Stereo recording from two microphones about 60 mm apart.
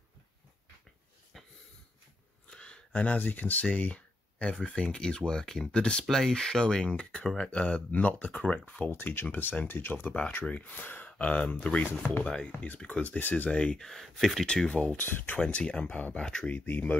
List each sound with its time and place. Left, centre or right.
2.5 s a sound: centre
2.9 s speech: left
3.6 s speech: left
6.0 s speech: centre; by 8.9 s left
8.9 s speech: left; by 13.8 s centre
13.8 s speech: centre
14.4 s speech: centre
14.8 s speech: left
15.3 s speech: centre